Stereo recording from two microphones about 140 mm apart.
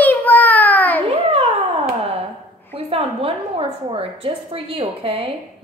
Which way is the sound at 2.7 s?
45° right (ahead or behind).